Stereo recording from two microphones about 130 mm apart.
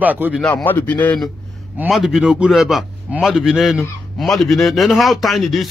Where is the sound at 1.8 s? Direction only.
Centre (ahead or behind).